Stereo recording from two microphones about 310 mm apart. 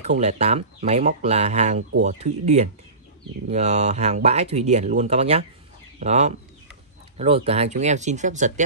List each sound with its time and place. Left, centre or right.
0.0 s speech: right